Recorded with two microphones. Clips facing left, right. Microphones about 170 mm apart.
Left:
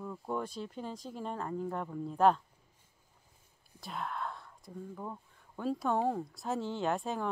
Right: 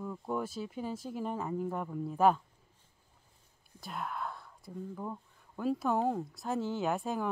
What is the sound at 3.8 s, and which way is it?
Speech, 5° right (ahead or behind).